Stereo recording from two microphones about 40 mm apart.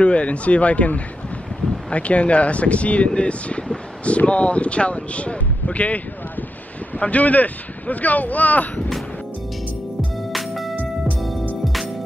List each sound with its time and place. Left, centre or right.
0.0 s speech: left
10.3 s music: centre